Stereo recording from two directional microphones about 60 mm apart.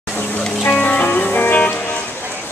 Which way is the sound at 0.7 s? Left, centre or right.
Left.